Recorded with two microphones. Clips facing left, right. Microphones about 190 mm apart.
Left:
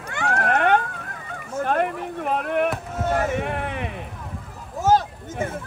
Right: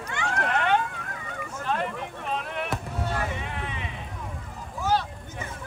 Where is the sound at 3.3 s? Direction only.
60° left (ahead or behind).